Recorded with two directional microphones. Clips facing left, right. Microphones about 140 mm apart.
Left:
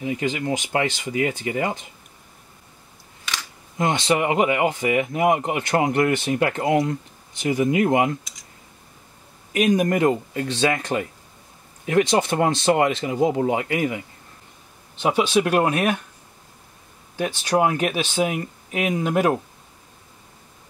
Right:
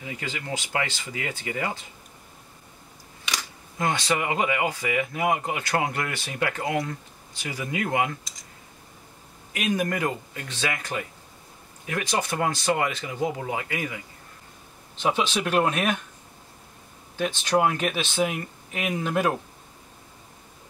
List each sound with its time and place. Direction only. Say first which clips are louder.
0.0 s speech: left 10 dB; 20° left (ahead or behind)
3.7 s speech: left 5 dB; 20° left (ahead or behind)
9.7 s speech: left 6 dB; 20° left (ahead or behind)
15.0 s speech: left 5 dB; 15° left (ahead or behind)
17.2 s speech: left 2 dB; 10° left (ahead or behind)